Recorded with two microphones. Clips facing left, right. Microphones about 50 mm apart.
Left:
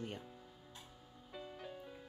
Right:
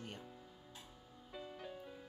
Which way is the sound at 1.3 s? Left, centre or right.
Centre.